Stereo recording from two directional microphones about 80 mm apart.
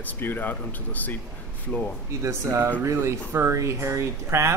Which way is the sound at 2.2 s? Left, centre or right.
Right.